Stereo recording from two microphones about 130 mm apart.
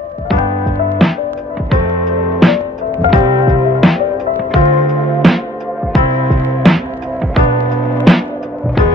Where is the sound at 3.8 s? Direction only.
Centre (ahead or behind).